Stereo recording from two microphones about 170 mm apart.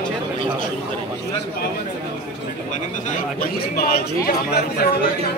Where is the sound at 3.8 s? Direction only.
65° left (ahead or behind).